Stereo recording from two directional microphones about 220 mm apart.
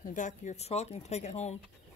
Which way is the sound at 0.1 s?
35° left (ahead or behind).